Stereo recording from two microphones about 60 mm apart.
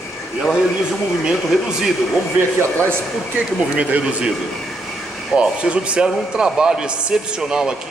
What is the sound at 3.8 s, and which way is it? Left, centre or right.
Speech, centre.